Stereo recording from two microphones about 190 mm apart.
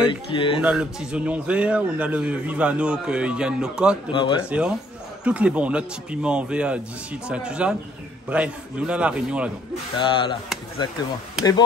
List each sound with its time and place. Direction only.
0.1 s speech: 25° left (ahead or behind)
0.6 s a man's voice: 5° right (ahead or behind)
4.1 s speech: 25° left (ahead or behind)
4.5 s a man's voice: 5° right (ahead or behind)
9.9 s speech: 25° left (ahead or behind)
11.4 s a man's voice: 5° right (ahead or behind)